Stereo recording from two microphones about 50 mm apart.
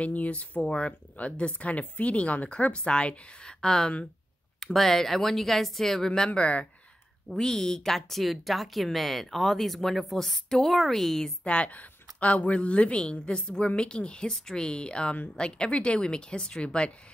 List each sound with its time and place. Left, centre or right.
0.0 s speech: left
7.2 s speech: centre
11.4 s speech: left